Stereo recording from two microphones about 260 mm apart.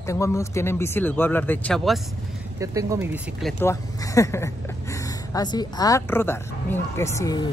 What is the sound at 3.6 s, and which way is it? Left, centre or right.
Speech, centre.